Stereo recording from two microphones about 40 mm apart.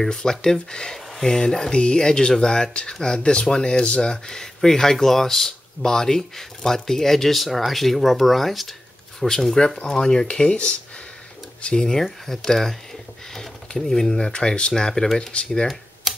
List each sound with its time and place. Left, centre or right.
0.1 s speech: centre
10.2 s speech: left
12.0 s speech: centre
15.7 s computer keyboard: centre